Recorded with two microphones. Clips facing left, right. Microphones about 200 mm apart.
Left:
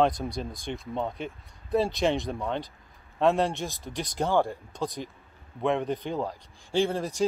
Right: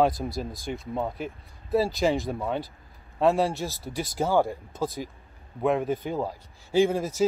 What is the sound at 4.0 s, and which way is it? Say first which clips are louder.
A man's voice: right 2 dB; 5° right (ahead or behind).